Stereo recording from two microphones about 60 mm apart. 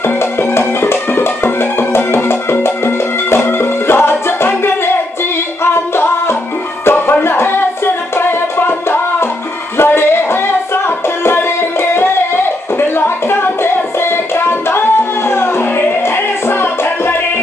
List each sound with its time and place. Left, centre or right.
0.0 s music: left
5.6 s singing: left
6.8 s music: left
9.8 s a sound: left
13.9 s music: left